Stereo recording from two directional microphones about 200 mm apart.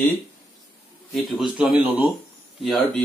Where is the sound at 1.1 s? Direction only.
5° right (ahead or behind).